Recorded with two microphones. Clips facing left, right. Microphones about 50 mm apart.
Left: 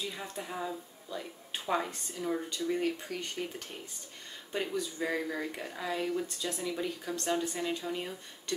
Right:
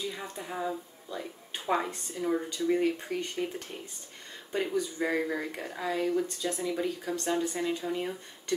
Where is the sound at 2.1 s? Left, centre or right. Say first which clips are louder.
Right 4 dB; centre.